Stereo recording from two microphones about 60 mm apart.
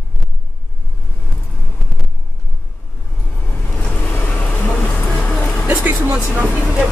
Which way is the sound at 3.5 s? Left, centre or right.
Left.